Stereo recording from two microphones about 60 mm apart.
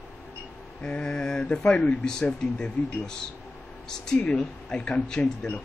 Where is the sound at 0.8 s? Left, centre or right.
Centre.